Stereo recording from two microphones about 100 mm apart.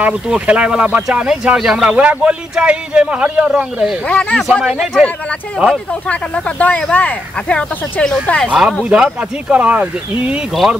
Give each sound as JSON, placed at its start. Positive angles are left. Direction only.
{"t": 0.0, "sound": "speech", "side_deg": -10}
{"t": 4.0, "sound": "speech", "side_deg": 10}
{"t": 4.5, "sound": "speech", "side_deg": -5}
{"t": 5.9, "sound": "speech", "side_deg": 10}
{"t": 8.5, "sound": "speech", "side_deg": -5}